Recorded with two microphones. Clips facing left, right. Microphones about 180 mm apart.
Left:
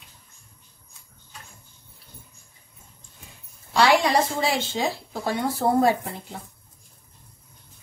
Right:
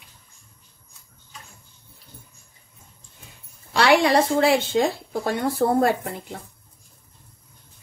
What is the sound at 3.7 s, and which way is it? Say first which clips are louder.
A woman's voice: right 2 dB; 65° right (ahead or behind).